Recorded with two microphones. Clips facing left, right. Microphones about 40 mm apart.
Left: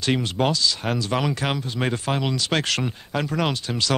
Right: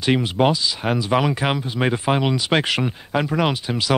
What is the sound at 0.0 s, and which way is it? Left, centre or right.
Speech, centre.